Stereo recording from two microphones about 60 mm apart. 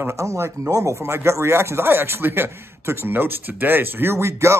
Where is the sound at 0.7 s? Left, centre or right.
Right.